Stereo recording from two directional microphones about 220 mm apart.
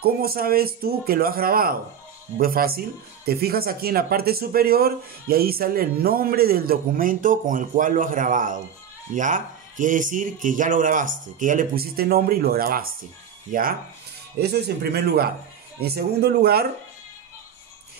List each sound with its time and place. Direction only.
0.0 s a man's voice: 45° right (ahead or behind)